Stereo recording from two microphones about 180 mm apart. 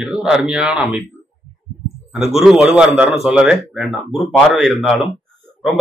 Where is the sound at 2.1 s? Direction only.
35° right (ahead or behind).